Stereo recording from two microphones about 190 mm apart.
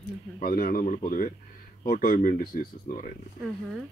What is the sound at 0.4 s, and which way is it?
Speech, 50° left (ahead or behind).